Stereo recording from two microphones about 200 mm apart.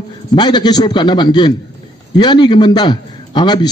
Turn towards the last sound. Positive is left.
turn(degrees=20)  # may be behind; listen again after turning